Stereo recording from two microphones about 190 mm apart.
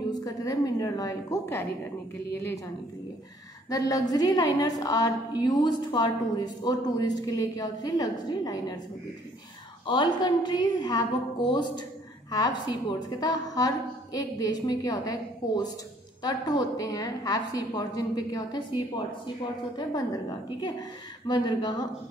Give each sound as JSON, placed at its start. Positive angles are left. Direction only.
{"t": 0.1, "sound": "a sound", "side_deg": 20}
{"t": 3.7, "sound": "a woman's voice", "side_deg": 20}
{"t": 9.8, "sound": "a woman's voice", "side_deg": 25}
{"t": 19.9, "sound": "a woman's voice", "side_deg": 20}